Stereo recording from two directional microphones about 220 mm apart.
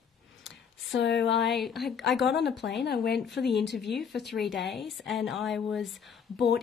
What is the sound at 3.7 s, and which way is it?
A woman's voice, centre (ahead or behind).